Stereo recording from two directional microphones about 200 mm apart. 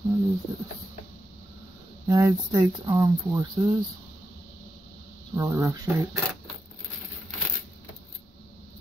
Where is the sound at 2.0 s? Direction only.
15° right (ahead or behind).